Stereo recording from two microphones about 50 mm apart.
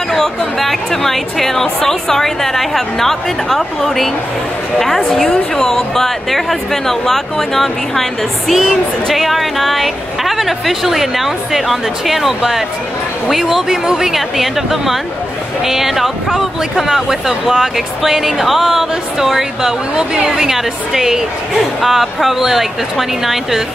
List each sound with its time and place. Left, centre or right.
0.1 s a woman's voice: centre